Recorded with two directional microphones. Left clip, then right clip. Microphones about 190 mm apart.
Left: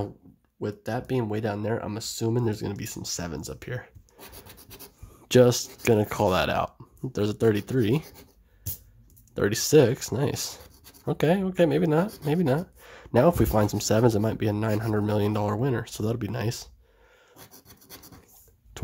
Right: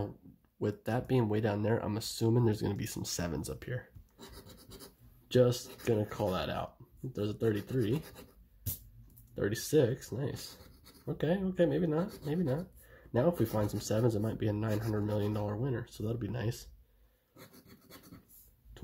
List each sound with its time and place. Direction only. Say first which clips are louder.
0.6 s speech: left 4 dB; 5° left (ahead or behind)
5.3 s speech: left 9 dB; 30° left (ahead or behind)
9.3 s speech: left 10 dB; 25° left (ahead or behind)